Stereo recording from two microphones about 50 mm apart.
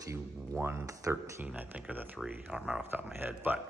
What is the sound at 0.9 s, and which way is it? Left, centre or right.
Speech, right.